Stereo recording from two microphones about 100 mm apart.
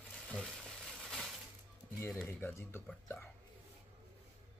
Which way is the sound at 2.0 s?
5° left (ahead or behind).